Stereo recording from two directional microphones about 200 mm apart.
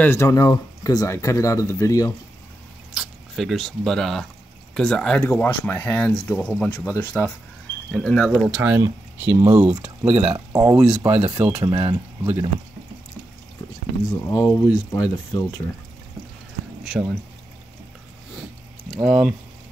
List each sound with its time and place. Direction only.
0.0 s speech: 15° left (ahead or behind)
2.9 s speech: centre (ahead or behind)
10.0 s speech: 30° right (ahead or behind)
10.3 s speech: 15° right (ahead or behind)
14.1 s speech: 15° left (ahead or behind)
16.8 s speech: centre (ahead or behind)
18.9 s speech: 5° right (ahead or behind)